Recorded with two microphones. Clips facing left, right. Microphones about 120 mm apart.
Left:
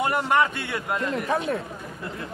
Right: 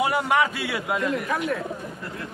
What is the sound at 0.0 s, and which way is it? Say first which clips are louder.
A man's voice: even; 5° right (ahead or behind).